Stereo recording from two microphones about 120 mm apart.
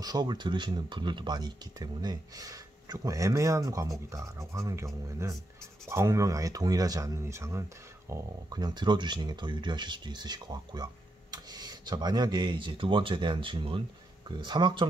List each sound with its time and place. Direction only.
0.0 s speech: 35° right (ahead or behind)
8.1 s speech: 35° right (ahead or behind)